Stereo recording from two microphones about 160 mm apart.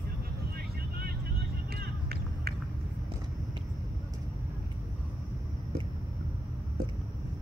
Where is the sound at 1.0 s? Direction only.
75° right (ahead or behind).